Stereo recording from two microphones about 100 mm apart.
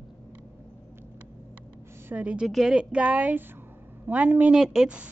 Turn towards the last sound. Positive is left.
turn(degrees=-10)  # may be behind; listen again after turning